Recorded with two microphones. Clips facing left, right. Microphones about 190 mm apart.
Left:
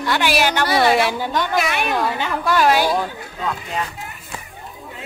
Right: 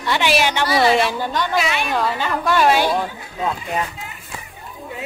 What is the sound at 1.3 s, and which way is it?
Speech, 50° left (ahead or behind).